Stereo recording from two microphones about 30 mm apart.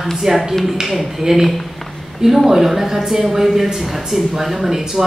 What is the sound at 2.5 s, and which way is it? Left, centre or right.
Speech, centre.